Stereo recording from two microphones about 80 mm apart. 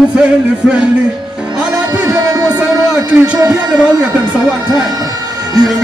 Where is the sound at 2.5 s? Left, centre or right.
Centre.